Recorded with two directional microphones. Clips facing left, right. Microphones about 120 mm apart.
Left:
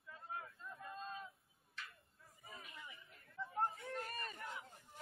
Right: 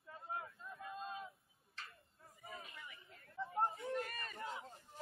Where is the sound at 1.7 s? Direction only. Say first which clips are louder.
Even; 30° right (ahead or behind).